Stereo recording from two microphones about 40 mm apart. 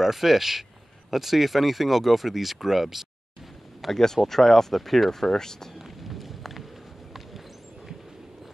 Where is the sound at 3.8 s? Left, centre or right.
Centre.